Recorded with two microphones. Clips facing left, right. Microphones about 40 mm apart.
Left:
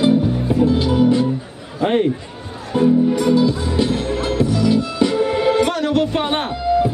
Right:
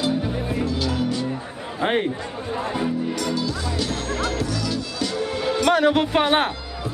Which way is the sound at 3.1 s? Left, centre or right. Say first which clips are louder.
Left 9 dB; left.